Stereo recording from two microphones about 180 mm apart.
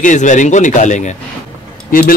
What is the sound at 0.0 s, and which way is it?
A man's voice, 45° left (ahead or behind).